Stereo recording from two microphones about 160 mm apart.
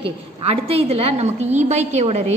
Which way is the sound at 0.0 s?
40° right (ahead or behind).